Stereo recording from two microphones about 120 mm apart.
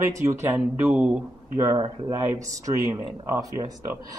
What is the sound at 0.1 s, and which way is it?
A man's voice, 20° right (ahead or behind).